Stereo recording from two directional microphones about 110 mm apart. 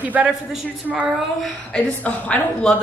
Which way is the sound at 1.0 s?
5° left (ahead or behind).